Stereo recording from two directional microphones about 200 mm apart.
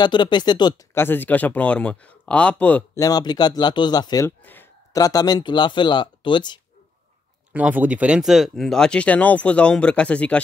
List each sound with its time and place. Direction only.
0.0 s speech: 20° left (ahead or behind); by 2.5 s 5° left (ahead or behind)
3.0 s a man's voice: 20° left (ahead or behind)
7.5 s speech: 10° right (ahead or behind)